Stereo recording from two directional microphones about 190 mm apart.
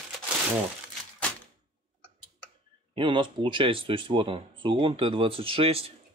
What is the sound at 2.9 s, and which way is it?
Speech, 25° right (ahead or behind).